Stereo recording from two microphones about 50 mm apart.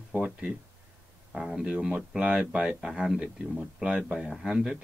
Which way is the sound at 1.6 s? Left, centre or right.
Centre.